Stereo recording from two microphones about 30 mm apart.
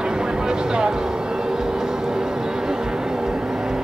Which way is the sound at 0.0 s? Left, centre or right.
Right.